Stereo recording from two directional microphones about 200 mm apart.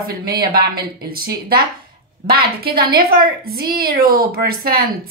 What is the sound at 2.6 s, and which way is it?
Speech, 50° right (ahead or behind).